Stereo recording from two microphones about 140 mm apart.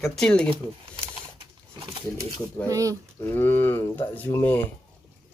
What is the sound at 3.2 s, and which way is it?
Stir, 15° left (ahead or behind).